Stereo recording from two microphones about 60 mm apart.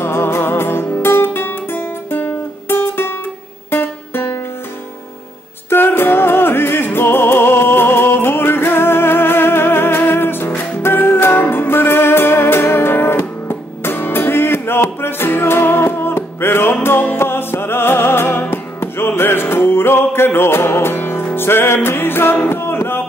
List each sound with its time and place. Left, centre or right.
0.0 s music: left
5.7 s music: left